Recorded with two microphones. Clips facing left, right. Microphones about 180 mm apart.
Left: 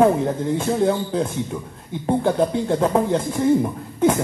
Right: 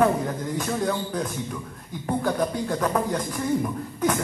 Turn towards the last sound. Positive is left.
turn(degrees=25)  # may be behind; listen again after turning